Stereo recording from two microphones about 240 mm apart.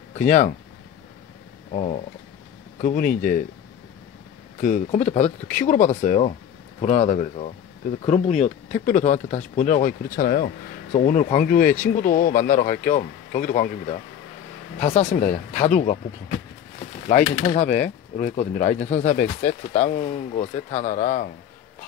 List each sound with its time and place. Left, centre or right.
0.1 s speech: left
1.7 s speech: left
4.6 s speech: left